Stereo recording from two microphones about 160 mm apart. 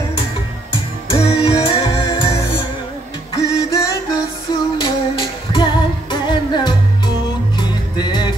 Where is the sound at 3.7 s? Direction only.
25° left (ahead or behind).